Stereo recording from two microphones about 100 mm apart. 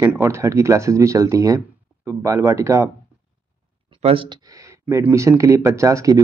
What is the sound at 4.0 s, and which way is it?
Speech, 75° right (ahead or behind).